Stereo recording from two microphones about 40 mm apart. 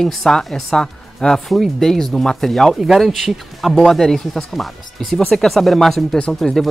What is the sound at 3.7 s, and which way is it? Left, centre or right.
Speech, centre.